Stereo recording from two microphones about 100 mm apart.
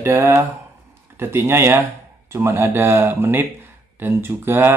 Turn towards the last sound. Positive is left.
turn(degrees=-20)  # may be behind; listen again after turning